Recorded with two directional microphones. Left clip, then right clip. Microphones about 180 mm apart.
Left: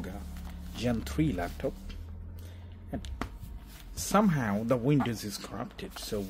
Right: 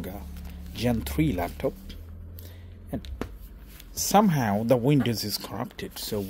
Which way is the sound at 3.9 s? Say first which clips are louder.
Right 6 dB; 30° right (ahead or behind).